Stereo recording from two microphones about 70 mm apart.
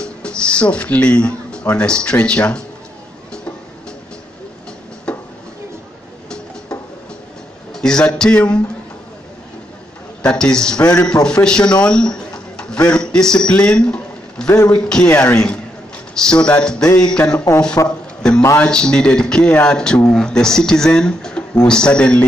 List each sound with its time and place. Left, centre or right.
0.0 s speech: centre
5.1 s a sound: centre
7.7 s a man's voice: centre
10.2 s speech: centre
11.8 s a sound: centre
14.7 s speech: centre
17.5 s speech: left
17.8 s a sound: centre
18.6 s speech: centre